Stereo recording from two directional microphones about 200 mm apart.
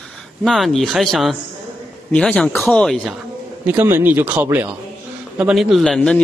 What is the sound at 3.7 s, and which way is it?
A man's voice, 10° right (ahead or behind).